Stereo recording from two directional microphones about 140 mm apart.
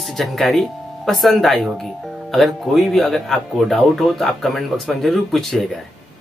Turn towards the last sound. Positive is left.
turn(degrees=5)  # may be behind; listen again after turning